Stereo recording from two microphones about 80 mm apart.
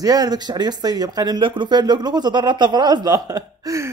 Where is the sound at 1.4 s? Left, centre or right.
Right.